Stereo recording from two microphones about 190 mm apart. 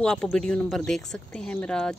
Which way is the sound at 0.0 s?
5° left (ahead or behind).